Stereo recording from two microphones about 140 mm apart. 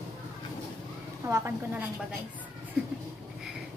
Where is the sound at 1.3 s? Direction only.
20° right (ahead or behind).